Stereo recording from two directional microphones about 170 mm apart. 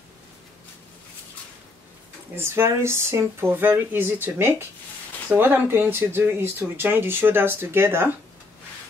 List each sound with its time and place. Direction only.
2.3 s speech: 15° right (ahead or behind)